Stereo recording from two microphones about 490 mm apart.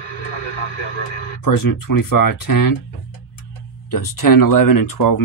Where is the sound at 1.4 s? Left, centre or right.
Left.